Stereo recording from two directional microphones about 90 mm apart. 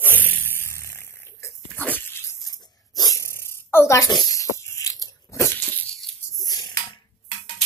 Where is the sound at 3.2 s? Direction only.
30° left (ahead or behind).